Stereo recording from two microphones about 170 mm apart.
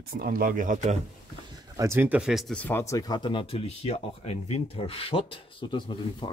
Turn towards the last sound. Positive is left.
turn(degrees=30)  # may be behind; listen again after turning